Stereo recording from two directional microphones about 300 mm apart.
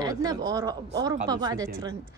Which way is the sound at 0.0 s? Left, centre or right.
Centre.